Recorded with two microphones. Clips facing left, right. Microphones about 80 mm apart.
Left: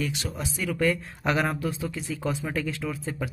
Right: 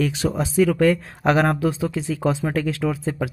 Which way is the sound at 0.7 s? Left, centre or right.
Right.